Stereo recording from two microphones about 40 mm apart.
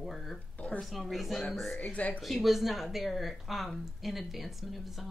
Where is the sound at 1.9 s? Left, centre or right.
Left.